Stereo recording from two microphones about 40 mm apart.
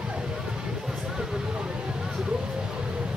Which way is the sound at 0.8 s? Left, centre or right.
Centre.